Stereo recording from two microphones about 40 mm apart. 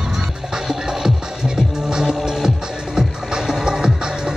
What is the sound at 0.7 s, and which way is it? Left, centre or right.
Music, centre.